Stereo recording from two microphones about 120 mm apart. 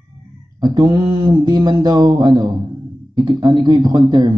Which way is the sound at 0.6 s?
35° right (ahead or behind).